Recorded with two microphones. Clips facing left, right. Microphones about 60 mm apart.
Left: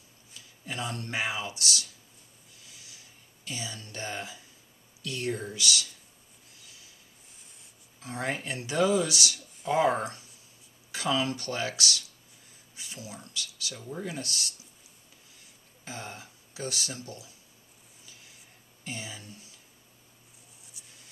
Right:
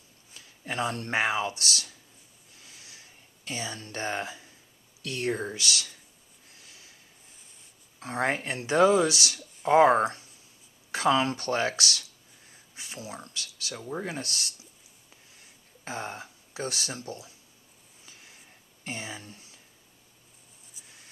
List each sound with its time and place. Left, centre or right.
0.7 s speech: right
3.4 s speech: right
8.0 s speech: right
15.8 s speech: right
18.9 s speech: right
20.7 s a sound: centre